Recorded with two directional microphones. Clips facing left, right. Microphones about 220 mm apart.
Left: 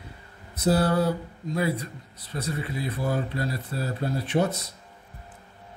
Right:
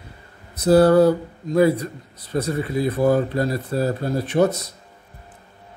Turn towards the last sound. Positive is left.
turn(degrees=-40)  # may be behind; listen again after turning